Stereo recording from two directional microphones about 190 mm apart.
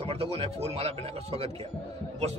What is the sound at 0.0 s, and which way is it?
A man's voice, 30° right (ahead or behind).